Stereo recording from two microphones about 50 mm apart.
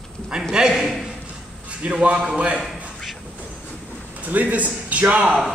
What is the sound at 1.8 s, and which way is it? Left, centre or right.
Speech, right.